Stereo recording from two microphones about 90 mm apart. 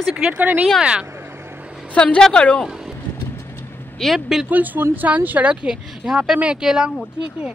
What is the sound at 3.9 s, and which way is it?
Speech, centre (ahead or behind).